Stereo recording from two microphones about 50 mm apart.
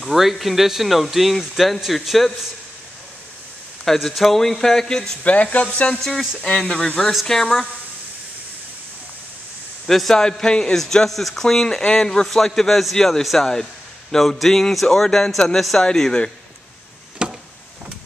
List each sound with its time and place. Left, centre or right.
0.0 s speech: centre
3.8 s speech: centre
5.2 s speech: left
5.9 s speech: centre
9.8 s speech: centre
17.2 s a sound: centre